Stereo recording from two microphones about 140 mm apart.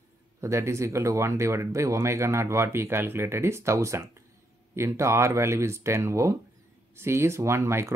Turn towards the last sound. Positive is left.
turn(degrees=-20)  # may be behind; listen again after turning